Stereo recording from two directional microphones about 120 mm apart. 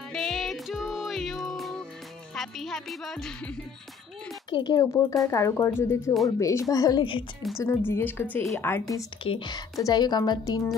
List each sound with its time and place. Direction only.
0.1 s music: centre (ahead or behind)
2.3 s speech: centre (ahead or behind)
4.5 s speech: 40° left (ahead or behind)
7.5 s a woman's voice: 20° left (ahead or behind)
9.2 s speech: 50° left (ahead or behind)
9.5 s speech: 30° left (ahead or behind)